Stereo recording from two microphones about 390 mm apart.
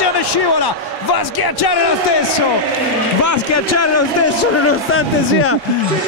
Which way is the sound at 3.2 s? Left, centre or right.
Left.